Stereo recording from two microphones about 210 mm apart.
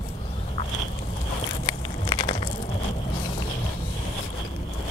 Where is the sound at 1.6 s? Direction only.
20° left (ahead or behind).